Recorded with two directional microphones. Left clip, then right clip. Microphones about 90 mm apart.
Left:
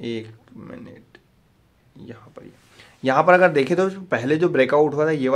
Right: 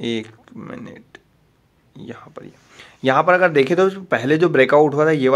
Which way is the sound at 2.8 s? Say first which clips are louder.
Right 2 dB; 25° right (ahead or behind).